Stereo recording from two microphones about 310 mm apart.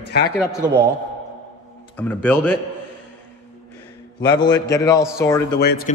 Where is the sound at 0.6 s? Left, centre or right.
Centre.